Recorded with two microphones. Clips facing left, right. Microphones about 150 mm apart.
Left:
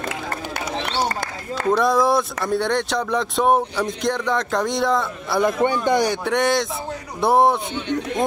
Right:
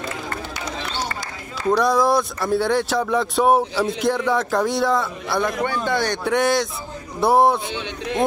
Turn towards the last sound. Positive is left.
turn(degrees=0)  # may be behind; listen again after turning